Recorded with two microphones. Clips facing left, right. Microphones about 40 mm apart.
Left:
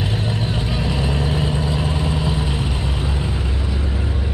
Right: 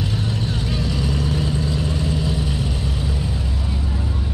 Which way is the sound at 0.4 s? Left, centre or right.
Left.